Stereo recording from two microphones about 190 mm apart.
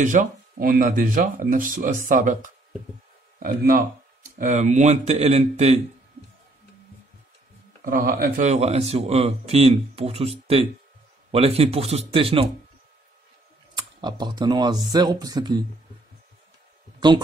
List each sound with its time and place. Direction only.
0.0 s speech: 40° right (ahead or behind)
7.8 s speech: 50° right (ahead or behind); by 12.4 s 30° right (ahead or behind)
13.7 s speech: 25° right (ahead or behind)